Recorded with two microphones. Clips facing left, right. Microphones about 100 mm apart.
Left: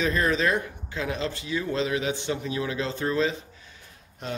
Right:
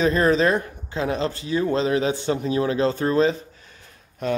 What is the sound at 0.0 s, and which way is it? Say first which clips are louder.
Speech: right 6 dB; 35° right (ahead or behind).